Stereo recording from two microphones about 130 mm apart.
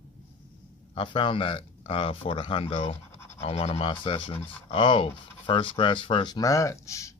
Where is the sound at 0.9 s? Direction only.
40° left (ahead or behind).